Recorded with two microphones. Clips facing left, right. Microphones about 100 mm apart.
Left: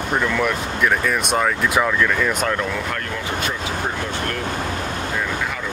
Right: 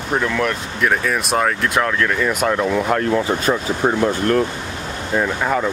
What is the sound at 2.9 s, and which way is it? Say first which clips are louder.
Speech: right 8 dB; 35° right (ahead or behind).